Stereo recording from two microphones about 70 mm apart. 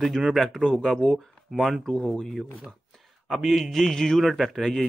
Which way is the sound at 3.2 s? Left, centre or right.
Centre.